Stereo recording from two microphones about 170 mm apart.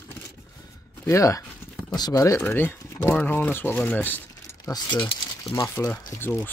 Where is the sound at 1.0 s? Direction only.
20° left (ahead or behind).